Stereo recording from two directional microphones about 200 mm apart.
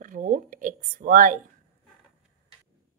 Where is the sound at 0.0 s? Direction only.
40° right (ahead or behind).